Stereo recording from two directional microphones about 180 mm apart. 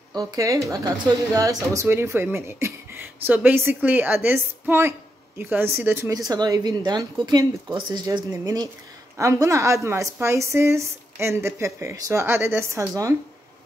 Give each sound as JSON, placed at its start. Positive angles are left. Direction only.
{"t": 0.1, "sound": "speech", "side_deg": -20}